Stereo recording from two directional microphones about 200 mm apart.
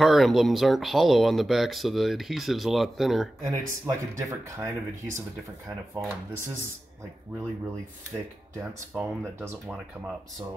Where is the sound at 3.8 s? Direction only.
15° right (ahead or behind).